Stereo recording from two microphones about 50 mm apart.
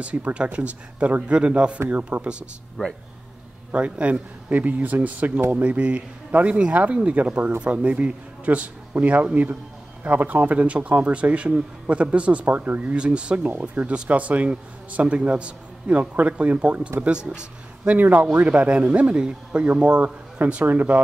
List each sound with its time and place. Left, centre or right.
0.0 s a man's voice: right
3.7 s a man's voice: right
12.9 s a man's voice: right
17.8 s a man's voice: right